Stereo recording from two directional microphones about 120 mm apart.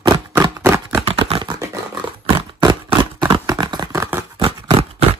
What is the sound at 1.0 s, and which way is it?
Computer keyboard, 55° right (ahead or behind).